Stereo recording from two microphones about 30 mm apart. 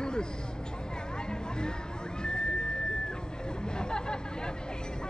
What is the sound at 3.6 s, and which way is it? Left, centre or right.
Chatter, left.